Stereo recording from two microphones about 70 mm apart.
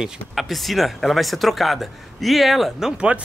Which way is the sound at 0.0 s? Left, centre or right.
Centre.